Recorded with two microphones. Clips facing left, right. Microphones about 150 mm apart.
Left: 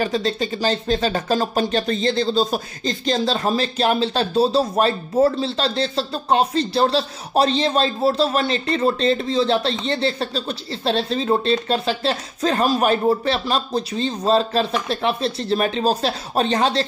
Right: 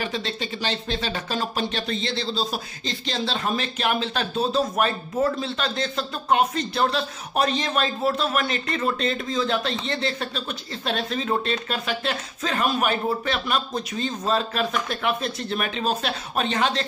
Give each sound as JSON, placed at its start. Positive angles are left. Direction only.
{"t": 0.0, "sound": "speech", "side_deg": 40}